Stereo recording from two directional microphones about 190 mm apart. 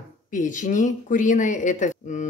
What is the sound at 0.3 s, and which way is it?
Speech, 40° left (ahead or behind).